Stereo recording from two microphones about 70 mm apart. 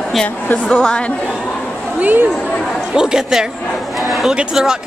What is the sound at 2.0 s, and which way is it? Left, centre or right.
Speech, right.